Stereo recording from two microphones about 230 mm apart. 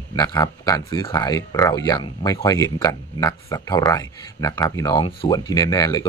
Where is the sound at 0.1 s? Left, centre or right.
Centre.